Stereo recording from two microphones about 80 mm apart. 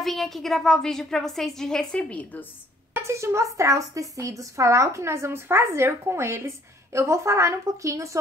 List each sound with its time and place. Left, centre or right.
0.0 s a woman's voice: centre
3.0 s speech: right